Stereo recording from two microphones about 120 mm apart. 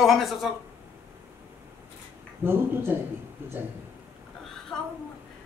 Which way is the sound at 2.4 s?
20° right (ahead or behind).